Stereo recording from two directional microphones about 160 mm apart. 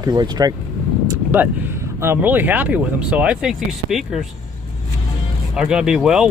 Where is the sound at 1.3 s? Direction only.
10° right (ahead or behind).